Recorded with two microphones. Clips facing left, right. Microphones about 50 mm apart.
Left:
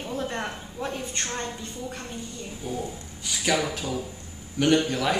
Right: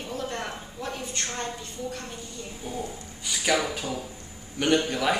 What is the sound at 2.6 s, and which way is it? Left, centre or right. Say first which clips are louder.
A man's voice: left 2 dB; centre.